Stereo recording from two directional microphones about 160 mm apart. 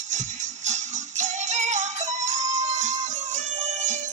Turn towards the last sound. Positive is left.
turn(degrees=-50)  # may be behind; listen again after turning